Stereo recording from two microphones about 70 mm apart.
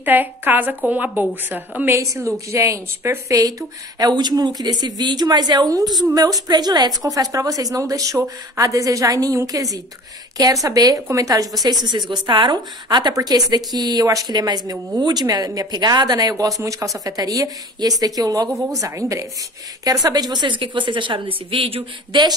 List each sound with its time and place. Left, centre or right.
0.0 s speech: right
1.9 s a woman's voice: right
4.0 s a woman's voice: right
11.1 s a woman's voice: right
11.6 s a woman's voice: right
13.1 s a woman's voice: right
17.7 s speech: right
18.7 s a woman's voice: right
19.8 s speech: right